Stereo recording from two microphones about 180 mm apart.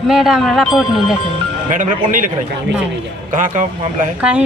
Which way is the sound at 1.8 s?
45° right (ahead or behind).